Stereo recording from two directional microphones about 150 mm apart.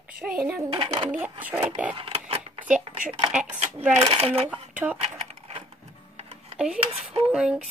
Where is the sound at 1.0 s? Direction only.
10° right (ahead or behind).